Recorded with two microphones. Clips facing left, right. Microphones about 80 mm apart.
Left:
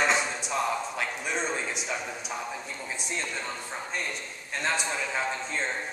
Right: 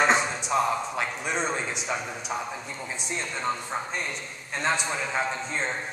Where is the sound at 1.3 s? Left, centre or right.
Right.